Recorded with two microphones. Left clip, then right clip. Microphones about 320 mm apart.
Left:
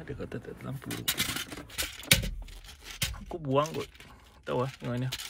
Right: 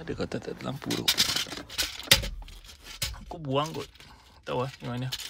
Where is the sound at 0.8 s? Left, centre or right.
Right.